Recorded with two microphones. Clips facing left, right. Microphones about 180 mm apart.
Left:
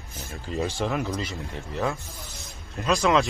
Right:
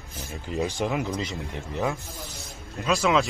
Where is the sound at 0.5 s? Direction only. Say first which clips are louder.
Even; 15° right (ahead or behind).